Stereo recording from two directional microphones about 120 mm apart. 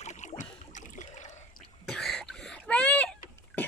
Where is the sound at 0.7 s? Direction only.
90° left.